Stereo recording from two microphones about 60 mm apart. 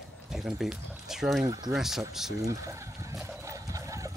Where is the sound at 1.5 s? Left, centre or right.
Right.